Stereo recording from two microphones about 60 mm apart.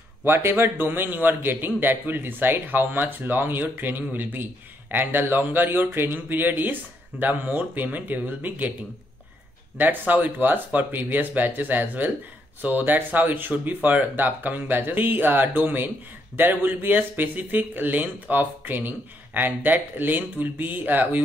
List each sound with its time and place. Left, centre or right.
0.2 s speech: right
9.8 s speech: right